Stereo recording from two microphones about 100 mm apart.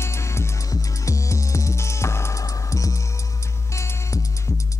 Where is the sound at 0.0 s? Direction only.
25° left (ahead or behind).